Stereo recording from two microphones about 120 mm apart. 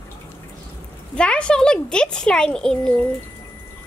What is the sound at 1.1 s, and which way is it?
Speech, 10° left (ahead or behind).